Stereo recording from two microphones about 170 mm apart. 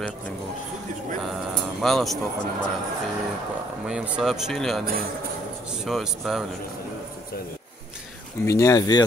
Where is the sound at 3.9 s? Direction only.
5° right (ahead or behind).